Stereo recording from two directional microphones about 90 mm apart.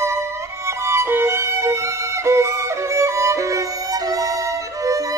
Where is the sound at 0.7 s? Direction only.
30° right (ahead or behind).